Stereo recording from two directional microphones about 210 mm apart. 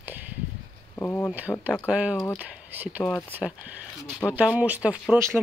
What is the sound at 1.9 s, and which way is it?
Speech, 5° right (ahead or behind).